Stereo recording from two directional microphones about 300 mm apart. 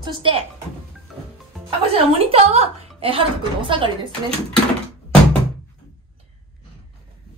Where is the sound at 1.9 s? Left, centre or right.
Centre.